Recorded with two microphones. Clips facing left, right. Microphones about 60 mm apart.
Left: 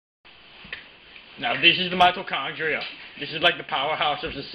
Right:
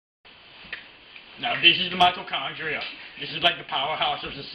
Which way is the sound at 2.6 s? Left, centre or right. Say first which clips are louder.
Left 4 dB; left.